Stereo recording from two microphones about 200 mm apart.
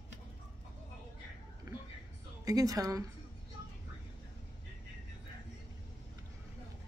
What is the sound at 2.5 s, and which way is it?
Speech, 15° right (ahead or behind).